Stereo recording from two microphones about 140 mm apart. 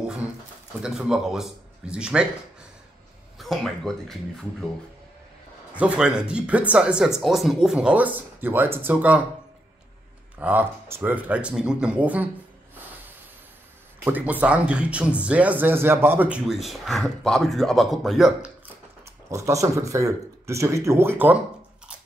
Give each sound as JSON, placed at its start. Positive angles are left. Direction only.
{"t": 0.8, "sound": "speech", "side_deg": -5}
{"t": 3.3, "sound": "speech", "side_deg": 0}
{"t": 5.7, "sound": "speech", "side_deg": -10}
{"t": 10.4, "sound": "speech", "side_deg": -15}
{"t": 14.0, "sound": "speech", "side_deg": -10}
{"t": 19.2, "sound": "speech", "side_deg": -20}